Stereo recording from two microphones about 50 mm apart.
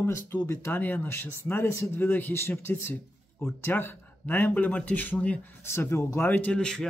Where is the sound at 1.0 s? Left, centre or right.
Left.